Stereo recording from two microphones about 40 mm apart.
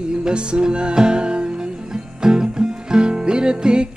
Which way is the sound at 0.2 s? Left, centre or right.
Right.